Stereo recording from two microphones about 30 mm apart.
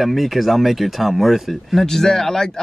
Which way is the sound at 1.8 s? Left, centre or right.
Centre.